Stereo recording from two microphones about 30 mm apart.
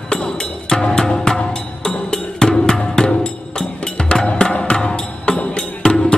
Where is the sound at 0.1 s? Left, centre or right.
Left.